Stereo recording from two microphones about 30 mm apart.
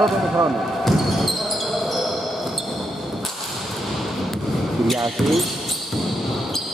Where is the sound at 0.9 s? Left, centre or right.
Centre.